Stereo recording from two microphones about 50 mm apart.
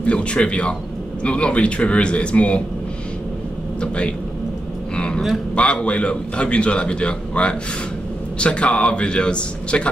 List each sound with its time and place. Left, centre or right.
0.0 s a man's voice: left
3.8 s a man's voice: left
4.9 s a sound: left
5.5 s a man's voice: left